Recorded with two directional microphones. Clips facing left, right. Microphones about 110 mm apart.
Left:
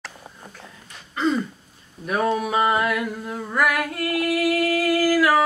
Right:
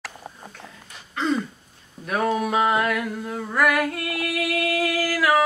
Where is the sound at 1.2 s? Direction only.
Centre (ahead or behind).